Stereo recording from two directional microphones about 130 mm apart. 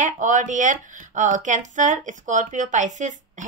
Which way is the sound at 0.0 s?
75° right (ahead or behind).